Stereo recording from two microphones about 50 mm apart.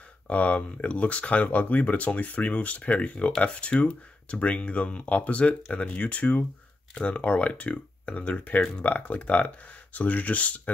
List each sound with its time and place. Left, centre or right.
0.3 s speech: left